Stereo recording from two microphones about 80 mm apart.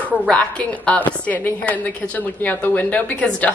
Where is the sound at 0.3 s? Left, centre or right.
Centre.